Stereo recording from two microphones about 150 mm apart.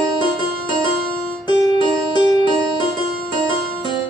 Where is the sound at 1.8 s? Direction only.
30° left (ahead or behind).